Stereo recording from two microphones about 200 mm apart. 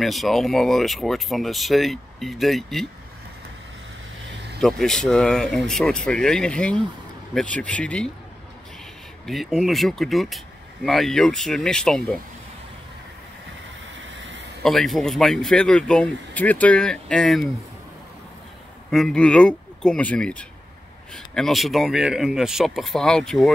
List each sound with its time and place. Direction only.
0.0 s speech: centre (ahead or behind)
4.6 s speech: centre (ahead or behind)
9.2 s speech: centre (ahead or behind)
13.9 s vehicle: 70° right (ahead or behind)
14.6 s speech: centre (ahead or behind)
18.9 s speech: centre (ahead or behind)